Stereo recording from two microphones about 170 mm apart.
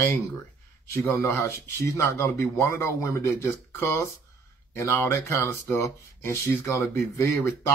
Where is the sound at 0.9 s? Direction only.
15° left (ahead or behind).